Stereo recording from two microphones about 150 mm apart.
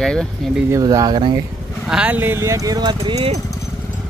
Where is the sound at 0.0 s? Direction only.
5° left (ahead or behind).